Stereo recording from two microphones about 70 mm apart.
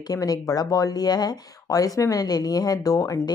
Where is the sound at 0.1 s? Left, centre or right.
Left.